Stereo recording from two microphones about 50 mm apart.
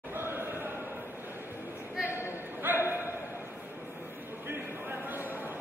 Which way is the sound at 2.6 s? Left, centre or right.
Right.